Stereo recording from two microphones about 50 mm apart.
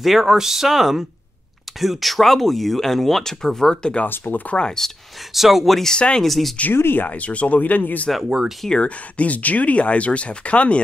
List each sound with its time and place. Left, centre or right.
0.0 s speech: centre
4.1 s speech: left
4.6 s speech: centre
5.3 s speech: centre
5.9 s speech: centre
6.2 s speech: centre
6.7 s speech: left
7.1 s speech: left
8.3 s speech: centre
8.6 s speech: left